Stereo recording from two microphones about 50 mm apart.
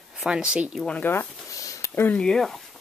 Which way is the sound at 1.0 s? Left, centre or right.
Left.